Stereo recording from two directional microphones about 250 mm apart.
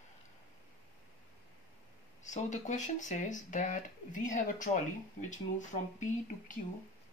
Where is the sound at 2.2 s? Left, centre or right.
Left.